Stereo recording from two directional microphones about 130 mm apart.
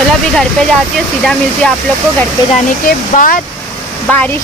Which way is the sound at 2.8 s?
90° left.